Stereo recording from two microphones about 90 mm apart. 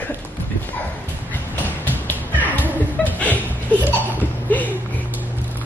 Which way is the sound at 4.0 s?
20° left (ahead or behind).